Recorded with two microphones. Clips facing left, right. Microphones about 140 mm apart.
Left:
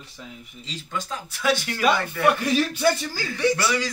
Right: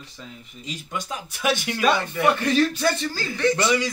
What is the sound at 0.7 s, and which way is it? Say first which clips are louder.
Speech: even; 20° right (ahead or behind).